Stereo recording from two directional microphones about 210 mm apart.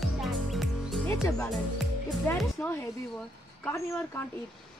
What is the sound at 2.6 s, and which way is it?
Speech, 10° left (ahead or behind).